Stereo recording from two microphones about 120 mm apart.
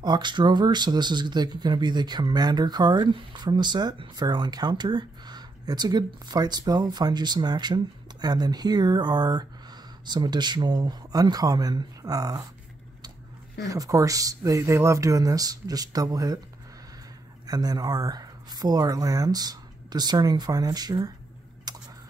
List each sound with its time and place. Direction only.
0.0 s speech: 35° right (ahead or behind)
13.7 s speech: 30° right (ahead or behind)
17.5 s speech: 30° right (ahead or behind)
21.7 s a sound: 35° right (ahead or behind)